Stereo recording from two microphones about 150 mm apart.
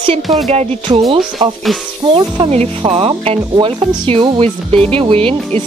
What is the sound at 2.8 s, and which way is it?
Speech, 30° right (ahead or behind).